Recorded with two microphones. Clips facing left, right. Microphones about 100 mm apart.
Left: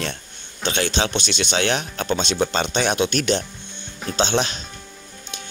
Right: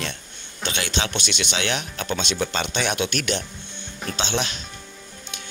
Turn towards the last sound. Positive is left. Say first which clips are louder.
# left 5 dB
turn(degrees=35)  # may be behind; listen again after turning